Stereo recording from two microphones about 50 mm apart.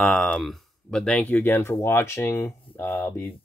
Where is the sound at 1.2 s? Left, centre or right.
Left.